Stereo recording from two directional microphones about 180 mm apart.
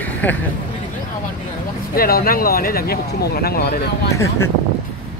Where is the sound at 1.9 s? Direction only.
55° left (ahead or behind).